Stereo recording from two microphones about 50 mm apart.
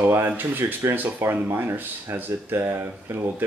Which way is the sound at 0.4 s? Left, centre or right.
Right.